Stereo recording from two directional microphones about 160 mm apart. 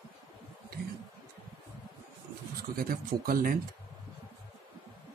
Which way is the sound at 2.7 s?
65° right (ahead or behind).